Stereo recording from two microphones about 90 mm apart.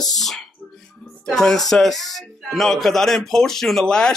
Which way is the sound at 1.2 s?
5° left (ahead or behind).